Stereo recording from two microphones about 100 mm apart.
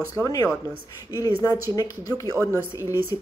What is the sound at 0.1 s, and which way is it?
Speech, 30° left (ahead or behind).